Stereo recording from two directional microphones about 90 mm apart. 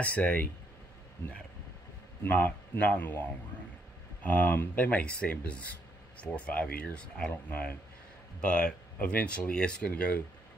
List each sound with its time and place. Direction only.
0.0 s speech: 15° left (ahead or behind)
2.2 s a man's voice: 20° left (ahead or behind)